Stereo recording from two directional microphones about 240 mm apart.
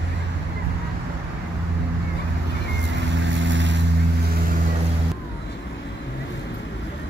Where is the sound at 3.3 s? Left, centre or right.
Right.